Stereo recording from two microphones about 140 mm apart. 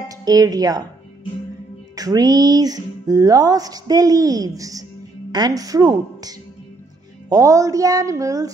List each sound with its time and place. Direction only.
0.1 s speech: 25° right (ahead or behind)
2.0 s speech: 25° right (ahead or behind)